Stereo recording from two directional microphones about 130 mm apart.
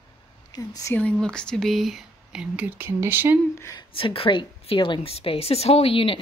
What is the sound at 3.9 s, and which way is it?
A woman's voice, 45° left (ahead or behind).